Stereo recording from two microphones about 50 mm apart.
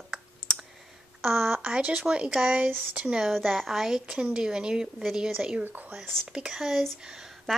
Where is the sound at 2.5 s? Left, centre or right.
Right.